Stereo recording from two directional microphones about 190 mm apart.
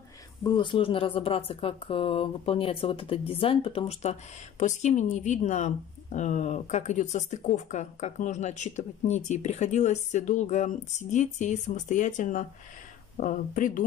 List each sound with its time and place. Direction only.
0.4 s speech: 25° left (ahead or behind); by 13.8 s 45° left (ahead or behind)